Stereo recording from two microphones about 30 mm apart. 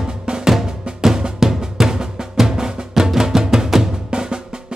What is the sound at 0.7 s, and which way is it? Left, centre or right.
Music, right.